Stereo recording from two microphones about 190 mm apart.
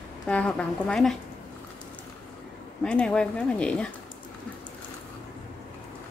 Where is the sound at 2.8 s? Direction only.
5° left (ahead or behind).